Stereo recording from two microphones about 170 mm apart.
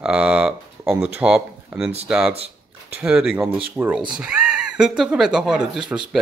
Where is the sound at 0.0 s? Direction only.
5° right (ahead or behind).